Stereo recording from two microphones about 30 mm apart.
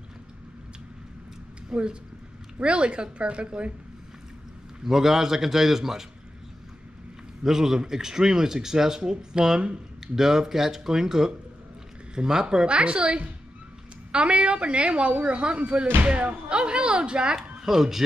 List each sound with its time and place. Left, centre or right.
1.7 s speech: right
4.8 s a man's voice: centre
7.4 s a man's voice: centre
9.3 s speech: right
10.1 s a man's voice: centre
12.4 s speech: right
17.6 s speech: centre